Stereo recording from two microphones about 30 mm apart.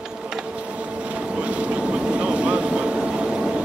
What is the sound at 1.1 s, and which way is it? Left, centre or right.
Vehicle, right.